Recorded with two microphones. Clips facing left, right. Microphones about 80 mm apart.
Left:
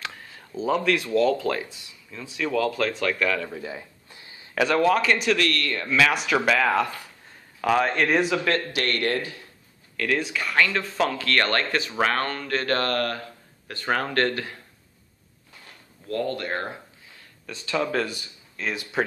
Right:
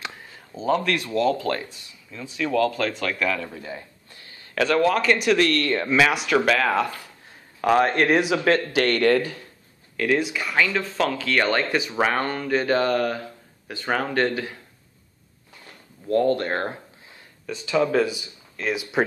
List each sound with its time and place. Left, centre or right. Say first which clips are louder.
0.0 s speech: even; centre
3.6 s speech: left 1 dB; centre
5.4 s speech: right 5 dB; right
6.0 s speech: right 2 dB; centre
9.9 s speech: right 3 dB; centre
16.1 s speech: right 7 dB; right
17.5 s speech: right 5 dB; centre